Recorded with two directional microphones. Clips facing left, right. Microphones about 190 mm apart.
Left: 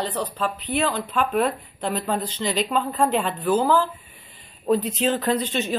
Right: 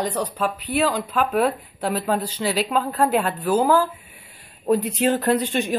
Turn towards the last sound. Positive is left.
turn(degrees=-10)  # may be behind; listen again after turning